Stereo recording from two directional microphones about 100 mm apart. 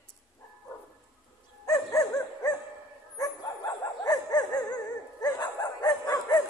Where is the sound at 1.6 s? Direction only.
35° left (ahead or behind).